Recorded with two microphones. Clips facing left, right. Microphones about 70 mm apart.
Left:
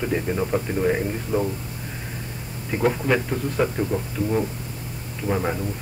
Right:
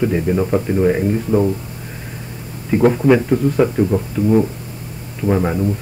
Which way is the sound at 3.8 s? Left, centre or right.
Right.